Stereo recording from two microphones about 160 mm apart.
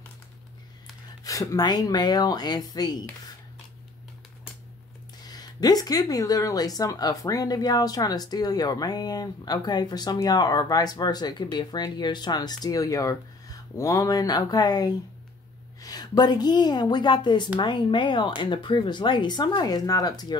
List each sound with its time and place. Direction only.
1.2 s speech: 20° left (ahead or behind)
5.2 s a woman's voice: 25° left (ahead or behind)